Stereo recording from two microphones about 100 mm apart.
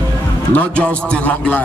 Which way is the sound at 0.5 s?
15° left (ahead or behind).